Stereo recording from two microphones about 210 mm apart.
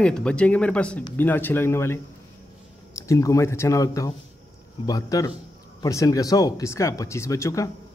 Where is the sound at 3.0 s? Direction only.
15° left (ahead or behind).